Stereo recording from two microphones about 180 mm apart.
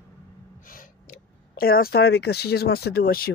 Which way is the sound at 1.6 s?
55° left (ahead or behind).